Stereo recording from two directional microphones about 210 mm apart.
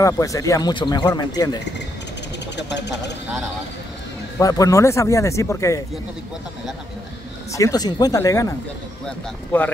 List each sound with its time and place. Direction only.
0.0 s speech: 15° left (ahead or behind)
4.4 s speech: 15° left (ahead or behind)
7.5 s speech: 15° left (ahead or behind)